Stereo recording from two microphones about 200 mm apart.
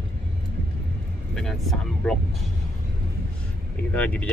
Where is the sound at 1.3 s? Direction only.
Centre (ahead or behind).